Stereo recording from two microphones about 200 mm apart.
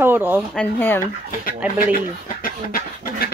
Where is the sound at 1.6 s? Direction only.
5° right (ahead or behind).